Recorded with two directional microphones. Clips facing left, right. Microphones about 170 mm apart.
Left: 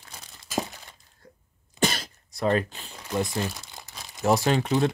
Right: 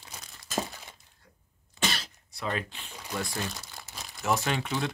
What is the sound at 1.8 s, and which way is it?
Throat clearing, 45° left (ahead or behind).